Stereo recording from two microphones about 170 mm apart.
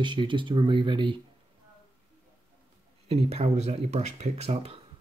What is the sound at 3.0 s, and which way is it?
Speech, 40° right (ahead or behind).